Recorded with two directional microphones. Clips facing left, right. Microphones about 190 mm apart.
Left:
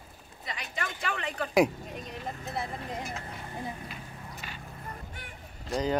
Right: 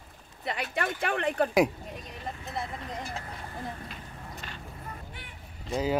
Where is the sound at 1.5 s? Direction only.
Centre (ahead or behind).